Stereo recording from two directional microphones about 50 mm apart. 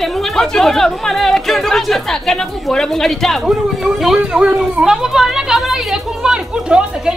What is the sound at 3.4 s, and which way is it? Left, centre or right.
Speech, centre.